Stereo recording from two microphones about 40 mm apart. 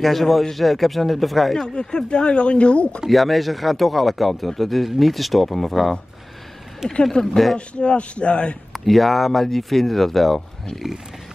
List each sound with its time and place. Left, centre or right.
0.0 s speech: centre
1.6 s speech: centre
3.1 s speech: centre
7.1 s speech: centre
7.5 s speech: left
8.7 s speech: centre